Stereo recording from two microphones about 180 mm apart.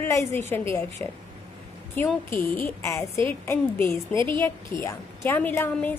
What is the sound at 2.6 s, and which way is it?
A woman's voice, 15° left (ahead or behind).